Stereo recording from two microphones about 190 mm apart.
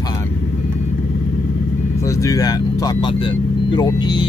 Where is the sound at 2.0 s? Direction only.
15° left (ahead or behind).